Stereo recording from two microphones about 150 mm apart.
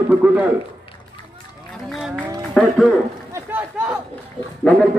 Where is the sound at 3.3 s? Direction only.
15° right (ahead or behind).